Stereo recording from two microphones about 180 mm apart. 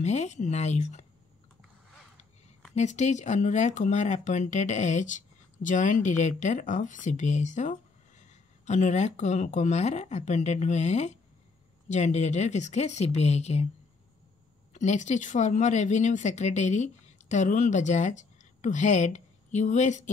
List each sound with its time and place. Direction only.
0.0 s speech: 40° left (ahead or behind)
2.7 s speech: 40° left (ahead or behind)
14.7 s speech: 40° left (ahead or behind)